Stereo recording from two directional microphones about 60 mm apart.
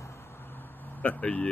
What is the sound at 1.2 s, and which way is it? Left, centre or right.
Speech, centre.